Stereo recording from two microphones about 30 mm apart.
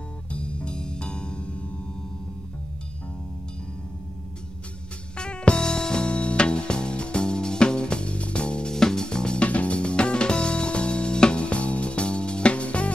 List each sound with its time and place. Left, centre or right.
0.3 s music: left
5.1 s music: left
8.6 s music: left
9.4 s music: left
11.4 s music: left